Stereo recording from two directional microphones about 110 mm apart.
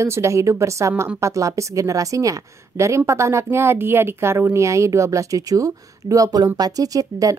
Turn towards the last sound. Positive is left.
turn(degrees=-30)  # may be behind; listen again after turning